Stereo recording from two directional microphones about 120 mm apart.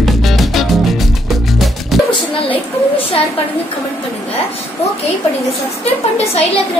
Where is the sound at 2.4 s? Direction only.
50° left (ahead or behind).